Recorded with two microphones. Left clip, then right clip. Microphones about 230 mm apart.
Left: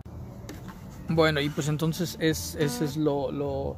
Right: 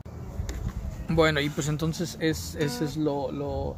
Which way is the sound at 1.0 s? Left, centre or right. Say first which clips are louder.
Right 1 dB; centre.